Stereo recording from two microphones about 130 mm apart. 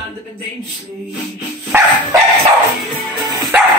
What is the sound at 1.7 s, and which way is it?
Bow-wow, 15° right (ahead or behind).